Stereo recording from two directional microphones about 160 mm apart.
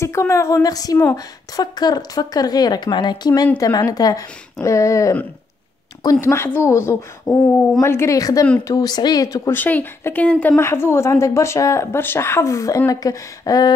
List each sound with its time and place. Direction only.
0.0 s speech: 15° left (ahead or behind)
6.2 s speech: 15° left (ahead or behind)